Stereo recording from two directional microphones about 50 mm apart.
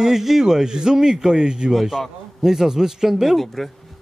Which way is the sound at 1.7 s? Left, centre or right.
Centre.